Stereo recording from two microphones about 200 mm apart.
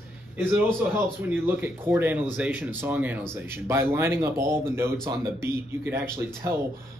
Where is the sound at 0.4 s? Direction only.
10° right (ahead or behind).